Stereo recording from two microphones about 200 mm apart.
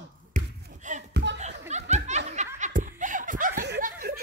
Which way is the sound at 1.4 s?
35° right (ahead or behind).